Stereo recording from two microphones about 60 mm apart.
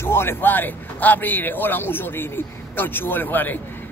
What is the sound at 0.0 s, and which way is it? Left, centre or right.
A man's voice, left.